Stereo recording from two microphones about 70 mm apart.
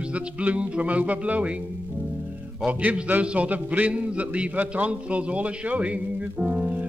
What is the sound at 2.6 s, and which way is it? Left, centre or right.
A man's voice, right.